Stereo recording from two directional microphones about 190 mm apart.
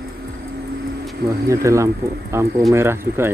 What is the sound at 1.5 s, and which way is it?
Speech, 15° right (ahead or behind).